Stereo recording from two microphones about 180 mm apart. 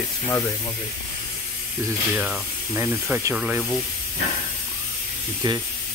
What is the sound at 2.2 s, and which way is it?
Speech, 10° right (ahead or behind).